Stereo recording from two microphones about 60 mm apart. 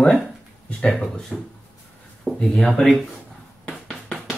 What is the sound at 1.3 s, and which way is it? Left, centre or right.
Speech, centre.